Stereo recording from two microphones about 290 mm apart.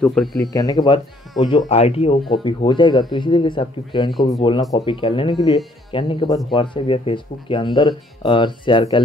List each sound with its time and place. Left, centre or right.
0.0 s speech: centre
0.4 s speech: centre